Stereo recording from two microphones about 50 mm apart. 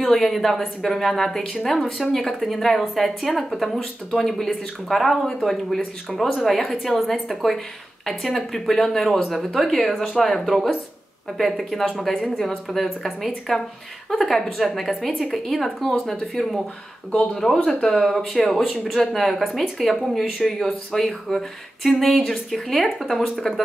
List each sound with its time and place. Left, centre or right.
0.0 s speech: centre
17.1 s speech: centre